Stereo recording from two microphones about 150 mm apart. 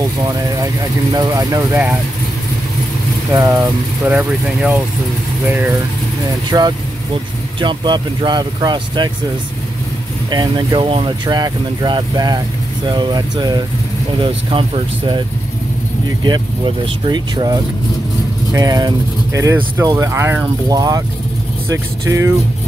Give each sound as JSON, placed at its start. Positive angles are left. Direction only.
{"t": 1.1, "sound": "speech", "side_deg": -25}
{"t": 1.7, "sound": "speech", "side_deg": -10}
{"t": 3.3, "sound": "speech", "side_deg": -25}
{"t": 4.1, "sound": "speech", "side_deg": -10}
{"t": 6.5, "sound": "speech", "side_deg": -25}
{"t": 10.3, "sound": "speech", "side_deg": -30}
{"t": 16.3, "sound": "speech", "side_deg": -35}